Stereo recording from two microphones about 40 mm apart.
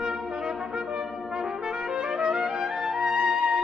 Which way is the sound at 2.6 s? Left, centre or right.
Centre.